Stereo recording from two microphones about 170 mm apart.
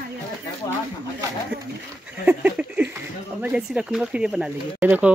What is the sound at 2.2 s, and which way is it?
Speech, 10° right (ahead or behind).